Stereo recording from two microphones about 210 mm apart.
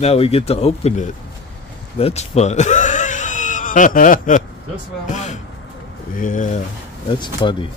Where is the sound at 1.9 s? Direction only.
30° left (ahead or behind).